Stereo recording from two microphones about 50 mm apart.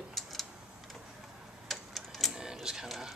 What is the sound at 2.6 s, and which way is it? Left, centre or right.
Speech, centre.